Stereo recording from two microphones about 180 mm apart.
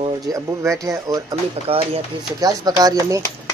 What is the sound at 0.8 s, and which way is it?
Speech, 20° right (ahead or behind).